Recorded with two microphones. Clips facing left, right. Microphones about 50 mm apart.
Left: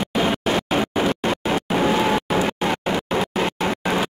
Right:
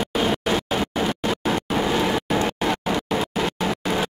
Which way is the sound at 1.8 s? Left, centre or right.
Left.